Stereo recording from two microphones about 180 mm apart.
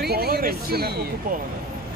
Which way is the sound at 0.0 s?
60° right (ahead or behind).